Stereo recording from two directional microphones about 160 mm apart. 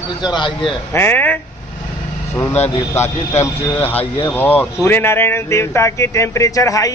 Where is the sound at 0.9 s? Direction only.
15° left (ahead or behind).